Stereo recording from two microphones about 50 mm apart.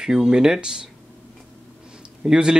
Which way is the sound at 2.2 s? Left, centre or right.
Centre.